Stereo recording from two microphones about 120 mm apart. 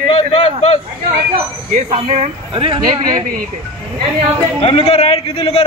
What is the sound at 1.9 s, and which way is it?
Speech, 80° right.